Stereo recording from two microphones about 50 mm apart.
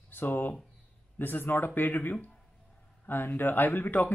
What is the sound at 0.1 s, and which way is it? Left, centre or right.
Speech, left.